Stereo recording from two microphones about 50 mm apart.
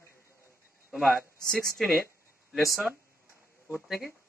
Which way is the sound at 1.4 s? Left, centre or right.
Centre.